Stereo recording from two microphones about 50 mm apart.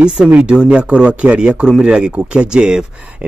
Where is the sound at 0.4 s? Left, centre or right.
Right.